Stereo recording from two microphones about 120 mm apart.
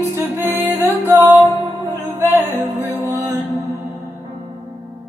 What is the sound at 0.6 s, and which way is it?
Music, 15° right (ahead or behind).